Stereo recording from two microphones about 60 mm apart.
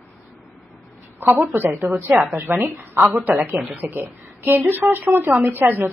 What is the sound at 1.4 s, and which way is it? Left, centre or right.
A woman's voice, right.